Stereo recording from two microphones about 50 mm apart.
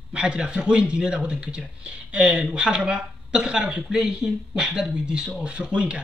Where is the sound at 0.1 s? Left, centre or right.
Centre.